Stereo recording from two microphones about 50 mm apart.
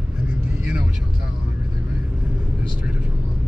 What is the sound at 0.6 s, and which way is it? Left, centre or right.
Vehicle, right.